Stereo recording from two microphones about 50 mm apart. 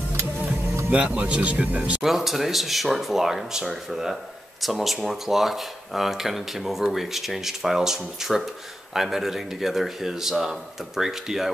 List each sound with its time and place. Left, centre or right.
0.8 s speech: right
2.0 s speech: centre